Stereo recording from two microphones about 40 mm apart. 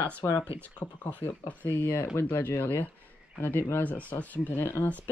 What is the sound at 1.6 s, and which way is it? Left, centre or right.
Speech, left.